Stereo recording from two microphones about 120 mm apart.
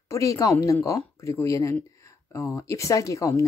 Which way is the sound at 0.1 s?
25° left (ahead or behind).